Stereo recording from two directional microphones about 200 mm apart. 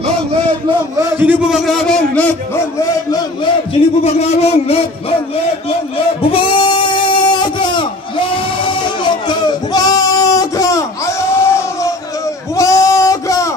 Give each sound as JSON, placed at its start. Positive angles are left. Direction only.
{"t": 0.9, "sound": "a man's voice", "side_deg": -10}
{"t": 4.0, "sound": "speech", "side_deg": 30}
{"t": 6.3, "sound": "a sound", "side_deg": 25}
{"t": 12.5, "sound": "sheep", "side_deg": 15}